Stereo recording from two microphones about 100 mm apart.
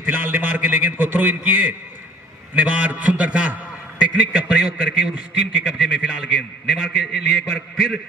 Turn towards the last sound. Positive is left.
turn(degrees=-5)  # may be behind; listen again after turning